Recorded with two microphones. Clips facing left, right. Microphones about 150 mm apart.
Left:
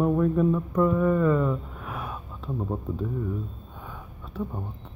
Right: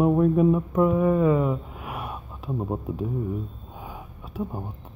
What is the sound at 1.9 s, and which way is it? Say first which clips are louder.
Gasp: right 1 dB; 5° right (ahead or behind).